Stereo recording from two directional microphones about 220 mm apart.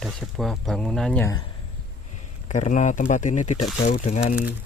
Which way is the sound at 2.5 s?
35° left (ahead or behind).